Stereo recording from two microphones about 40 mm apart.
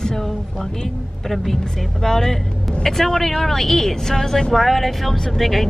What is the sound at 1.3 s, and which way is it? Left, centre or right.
Speech, centre.